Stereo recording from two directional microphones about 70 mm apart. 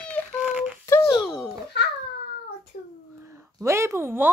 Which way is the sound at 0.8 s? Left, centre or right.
Left.